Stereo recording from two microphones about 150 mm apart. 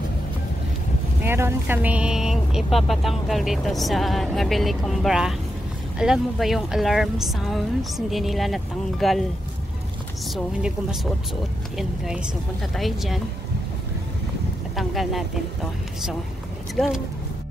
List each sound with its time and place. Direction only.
1.2 s speech: 15° right (ahead or behind); by 9.2 s centre (ahead or behind)
10.3 s speech: 5° right (ahead or behind)
12.7 s speech: centre (ahead or behind)
14.8 s speech: centre (ahead or behind)
16.7 s speech: centre (ahead or behind)